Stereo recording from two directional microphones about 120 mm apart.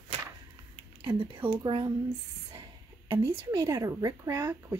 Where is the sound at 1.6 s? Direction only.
35° right (ahead or behind).